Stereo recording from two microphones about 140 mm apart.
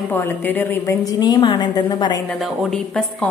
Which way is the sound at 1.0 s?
30° left (ahead or behind).